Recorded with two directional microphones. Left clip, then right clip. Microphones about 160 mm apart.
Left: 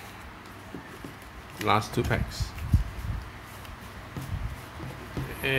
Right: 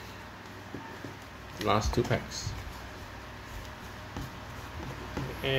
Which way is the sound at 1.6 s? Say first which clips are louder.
Left 3 dB; 35° left (ahead or behind).